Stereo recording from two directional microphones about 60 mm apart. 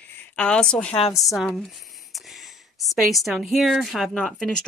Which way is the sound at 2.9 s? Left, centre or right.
Centre.